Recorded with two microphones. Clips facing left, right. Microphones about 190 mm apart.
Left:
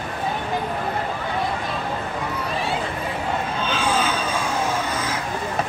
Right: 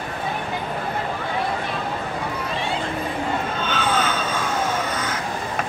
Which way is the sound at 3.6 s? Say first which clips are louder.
Left 1 dB; 30° left (ahead or behind).